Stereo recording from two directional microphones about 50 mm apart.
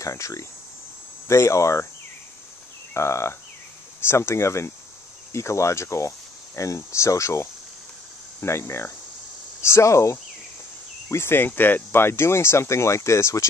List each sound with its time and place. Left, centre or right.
0.0 s speech: left
2.9 s speech: left
8.4 s speech: left
9.6 s speech: left
11.1 s speech: left